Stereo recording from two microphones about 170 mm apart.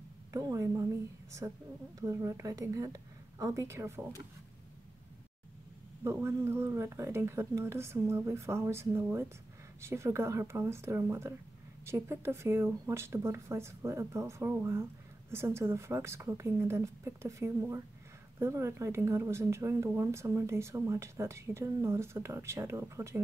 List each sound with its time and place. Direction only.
0.3 s a sound: 20° right (ahead or behind)
1.4 s a woman's voice: 15° right (ahead or behind)
6.0 s a woman's voice: 15° right (ahead or behind)